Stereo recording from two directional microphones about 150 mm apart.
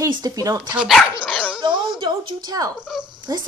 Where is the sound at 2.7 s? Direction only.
5° right (ahead or behind).